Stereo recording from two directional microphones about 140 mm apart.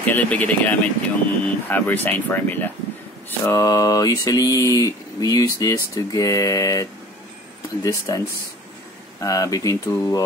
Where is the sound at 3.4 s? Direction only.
25° left (ahead or behind).